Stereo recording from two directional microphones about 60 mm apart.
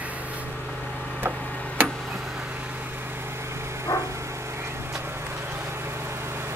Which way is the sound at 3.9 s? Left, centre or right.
Left.